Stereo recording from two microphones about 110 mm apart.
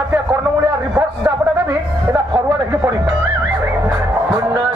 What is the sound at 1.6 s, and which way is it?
Music, 20° right (ahead or behind).